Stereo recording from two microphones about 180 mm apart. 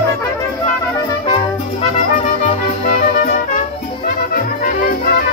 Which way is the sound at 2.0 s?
45° left (ahead or behind).